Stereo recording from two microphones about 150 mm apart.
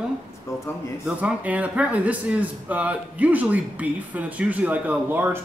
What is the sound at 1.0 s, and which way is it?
A man's voice, 10° right (ahead or behind).